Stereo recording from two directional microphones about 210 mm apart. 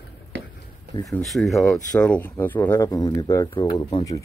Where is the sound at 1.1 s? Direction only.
Centre (ahead or behind).